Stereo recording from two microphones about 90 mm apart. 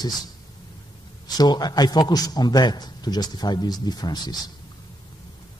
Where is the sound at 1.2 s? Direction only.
50° left (ahead or behind).